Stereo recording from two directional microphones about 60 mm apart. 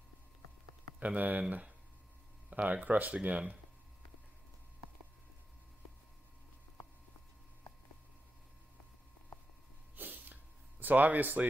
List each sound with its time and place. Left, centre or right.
0.9 s speech: right
2.5 s speech: right
9.9 s a sound: right